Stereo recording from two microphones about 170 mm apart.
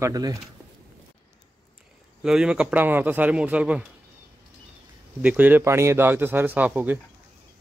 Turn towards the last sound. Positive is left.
turn(degrees=-10)  # may be behind; listen again after turning